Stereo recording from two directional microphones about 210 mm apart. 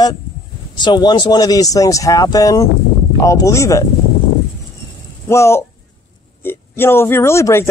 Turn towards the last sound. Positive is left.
turn(degrees=15)  # may be behind; listen again after turning